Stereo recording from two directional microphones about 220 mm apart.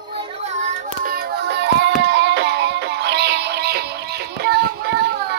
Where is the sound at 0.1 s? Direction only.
25° right (ahead or behind).